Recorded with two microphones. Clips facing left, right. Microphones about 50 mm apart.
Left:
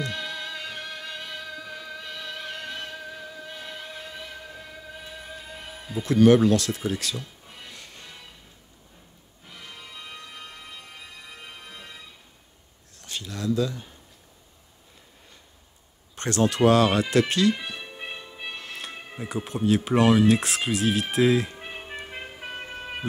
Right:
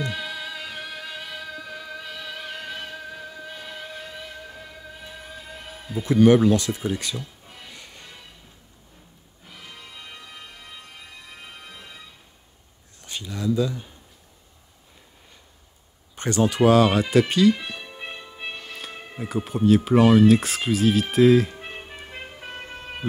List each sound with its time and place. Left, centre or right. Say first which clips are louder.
0.0 s music: right 2 dB; centre
9.5 s music: even; centre
13.0 s a sound: right 3 dB; centre
16.2 s speech: right 2 dB; centre
21.9 s music: left 1 dB; centre